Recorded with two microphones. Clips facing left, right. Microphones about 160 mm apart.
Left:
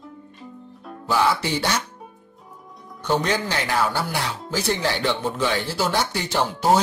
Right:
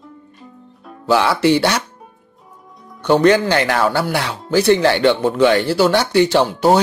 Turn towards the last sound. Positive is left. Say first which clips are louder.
# right 6 dB
turn(degrees=-70)  # may be behind; listen again after turning